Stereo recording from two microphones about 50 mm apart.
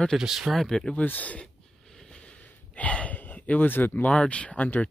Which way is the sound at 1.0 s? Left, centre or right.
Left.